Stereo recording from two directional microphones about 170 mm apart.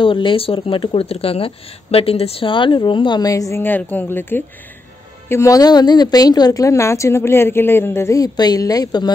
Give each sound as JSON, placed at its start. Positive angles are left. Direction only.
{"t": 0.0, "sound": "speech", "side_deg": 30}